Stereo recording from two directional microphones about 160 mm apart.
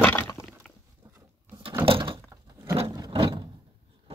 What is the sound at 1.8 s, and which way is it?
Door, 35° right (ahead or behind).